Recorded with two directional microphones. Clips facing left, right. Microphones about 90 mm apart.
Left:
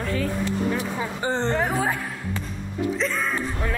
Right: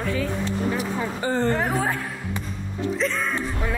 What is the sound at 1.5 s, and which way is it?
Speech, centre (ahead or behind).